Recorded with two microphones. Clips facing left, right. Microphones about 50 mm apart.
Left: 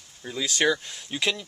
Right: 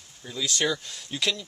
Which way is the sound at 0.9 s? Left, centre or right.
Centre.